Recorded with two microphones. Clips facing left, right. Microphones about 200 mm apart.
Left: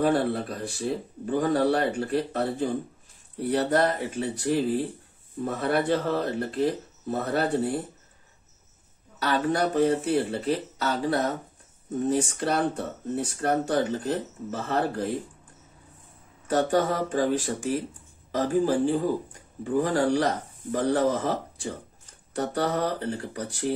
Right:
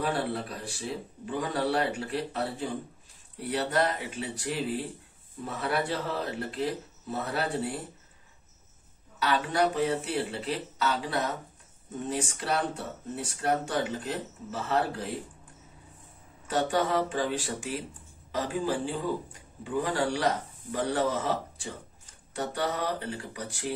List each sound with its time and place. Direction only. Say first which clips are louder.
0.0 s speech: left 7 dB; 45° left (ahead or behind)
9.2 s speech: left 2 dB; 45° left (ahead or behind)
16.4 s speech: left 4 dB; 45° left (ahead or behind)